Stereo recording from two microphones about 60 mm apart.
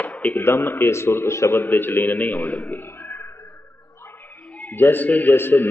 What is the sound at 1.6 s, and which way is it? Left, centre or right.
A man's voice, left.